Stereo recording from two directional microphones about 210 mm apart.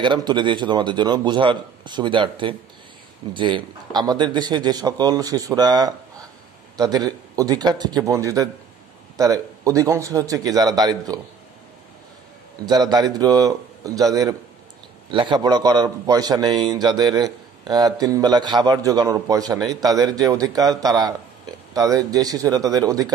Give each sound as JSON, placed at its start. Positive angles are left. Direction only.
{"t": 0.0, "sound": "a man's voice", "side_deg": -20}
{"t": 12.8, "sound": "a man's voice", "side_deg": -20}